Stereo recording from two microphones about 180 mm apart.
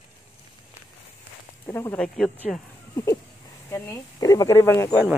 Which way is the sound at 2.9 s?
15° left (ahead or behind).